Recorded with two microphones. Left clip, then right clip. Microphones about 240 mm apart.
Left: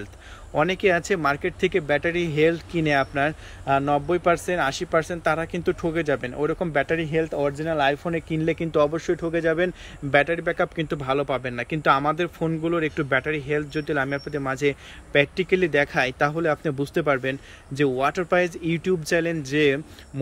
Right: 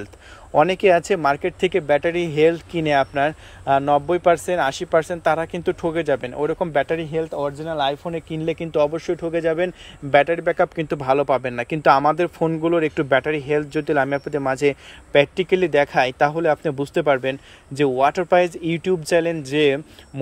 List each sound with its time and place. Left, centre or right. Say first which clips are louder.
0.6 s a man's voice: right 6 dB; right